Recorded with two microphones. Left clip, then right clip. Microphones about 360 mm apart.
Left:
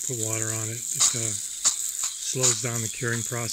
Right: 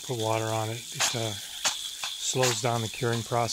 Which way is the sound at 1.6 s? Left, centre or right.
Right.